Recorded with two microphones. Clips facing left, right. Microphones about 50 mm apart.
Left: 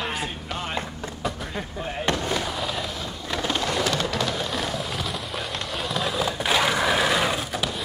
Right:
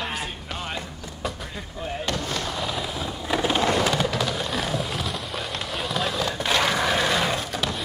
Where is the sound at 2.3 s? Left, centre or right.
Centre.